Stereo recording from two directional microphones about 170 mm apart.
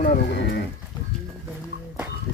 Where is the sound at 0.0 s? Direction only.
80° left.